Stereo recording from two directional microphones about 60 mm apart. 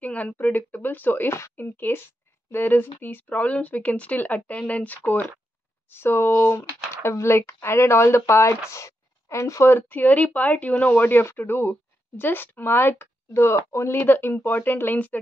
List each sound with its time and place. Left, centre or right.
0.0 s a sound: left
0.4 s speech: left
13.9 s speech: left